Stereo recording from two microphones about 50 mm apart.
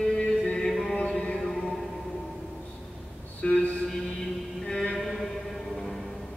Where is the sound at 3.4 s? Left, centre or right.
Left.